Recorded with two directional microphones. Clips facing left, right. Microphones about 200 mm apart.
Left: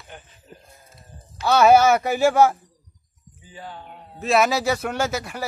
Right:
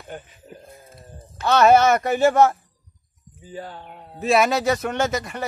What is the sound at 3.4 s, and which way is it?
Music, 45° right (ahead or behind).